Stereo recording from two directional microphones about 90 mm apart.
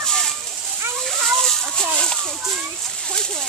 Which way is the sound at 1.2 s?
5° left (ahead or behind).